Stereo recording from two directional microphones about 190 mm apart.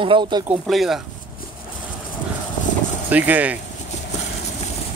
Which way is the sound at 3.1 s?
10° right (ahead or behind).